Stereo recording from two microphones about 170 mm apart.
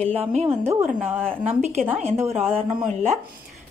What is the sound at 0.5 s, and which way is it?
Speech, 15° right (ahead or behind).